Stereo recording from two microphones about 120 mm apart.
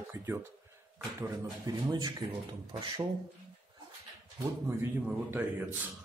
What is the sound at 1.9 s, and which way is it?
Speech, 35° right (ahead or behind).